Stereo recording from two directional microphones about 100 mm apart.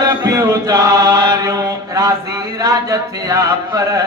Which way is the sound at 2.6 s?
35° right (ahead or behind).